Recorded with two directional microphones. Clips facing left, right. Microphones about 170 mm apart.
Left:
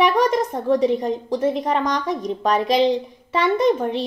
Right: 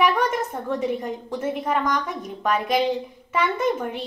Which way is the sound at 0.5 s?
25° left (ahead or behind).